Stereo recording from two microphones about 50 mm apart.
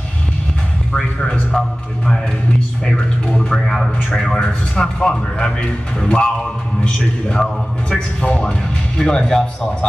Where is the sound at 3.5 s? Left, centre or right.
Centre.